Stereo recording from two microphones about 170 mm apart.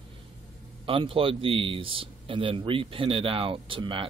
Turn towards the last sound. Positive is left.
turn(degrees=-30)  # may be behind; listen again after turning